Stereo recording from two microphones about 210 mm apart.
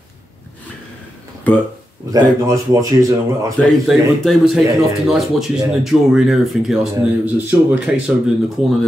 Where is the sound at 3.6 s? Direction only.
Centre (ahead or behind).